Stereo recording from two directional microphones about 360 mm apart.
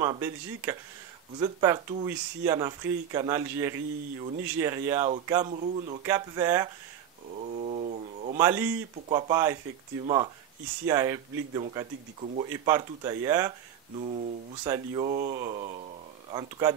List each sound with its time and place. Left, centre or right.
0.0 s speech: centre
7.3 s a sound: centre
8.4 s speech: centre